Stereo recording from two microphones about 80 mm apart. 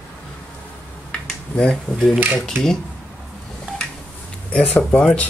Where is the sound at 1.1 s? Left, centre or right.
Centre.